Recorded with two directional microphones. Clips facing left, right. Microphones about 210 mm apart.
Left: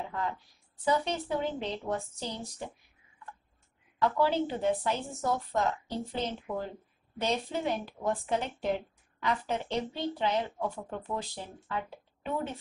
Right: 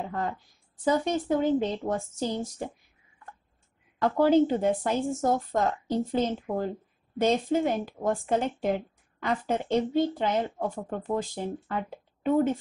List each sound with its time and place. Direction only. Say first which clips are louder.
0.8 s a woman's voice: right 5 dB; 45° right (ahead or behind)
4.0 s a woman's voice: right 7 dB; 45° right (ahead or behind)